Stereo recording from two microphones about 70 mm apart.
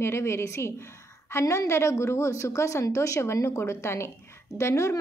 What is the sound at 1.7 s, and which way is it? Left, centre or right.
A woman's voice, left.